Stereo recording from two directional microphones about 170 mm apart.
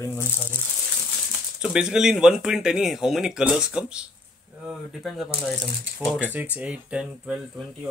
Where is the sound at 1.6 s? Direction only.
5° right (ahead or behind).